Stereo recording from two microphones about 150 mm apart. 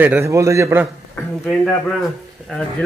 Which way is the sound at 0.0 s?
15° right (ahead or behind).